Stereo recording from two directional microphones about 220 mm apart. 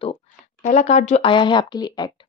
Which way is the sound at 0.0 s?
30° left (ahead or behind).